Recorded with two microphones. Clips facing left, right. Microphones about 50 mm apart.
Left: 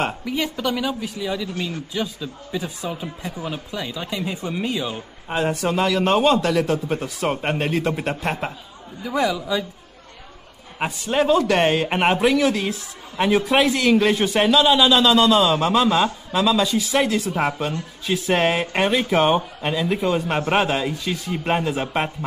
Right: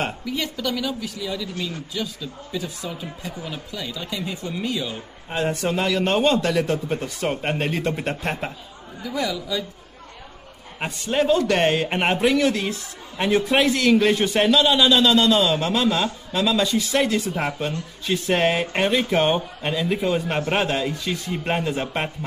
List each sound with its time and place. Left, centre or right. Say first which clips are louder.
0.2 s speech: left 3 dB; centre
5.3 s a man's voice: left 2 dB; centre
9.0 s speech: left 4 dB; left
10.8 s a man's voice: left 2 dB; centre